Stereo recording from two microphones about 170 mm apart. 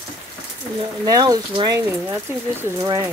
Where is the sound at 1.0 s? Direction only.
20° right (ahead or behind).